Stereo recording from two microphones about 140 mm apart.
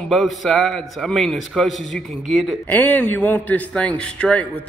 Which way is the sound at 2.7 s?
15° left (ahead or behind).